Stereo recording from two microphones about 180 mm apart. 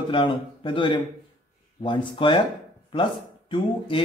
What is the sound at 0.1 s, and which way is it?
Speech, 30° left (ahead or behind).